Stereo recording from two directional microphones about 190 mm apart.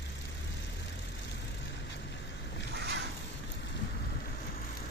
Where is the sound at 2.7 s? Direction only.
65° right (ahead or behind).